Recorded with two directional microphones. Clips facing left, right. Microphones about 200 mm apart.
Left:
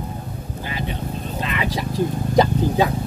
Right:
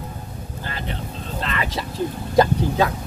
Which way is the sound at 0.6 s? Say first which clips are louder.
Left 3 dB; 15° left (ahead or behind).